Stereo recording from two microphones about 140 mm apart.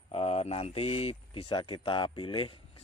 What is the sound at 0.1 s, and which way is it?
Speech, 45° left (ahead or behind).